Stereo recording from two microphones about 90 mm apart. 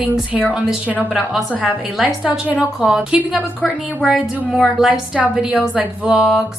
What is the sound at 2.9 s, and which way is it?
A woman's voice, 5° right (ahead or behind).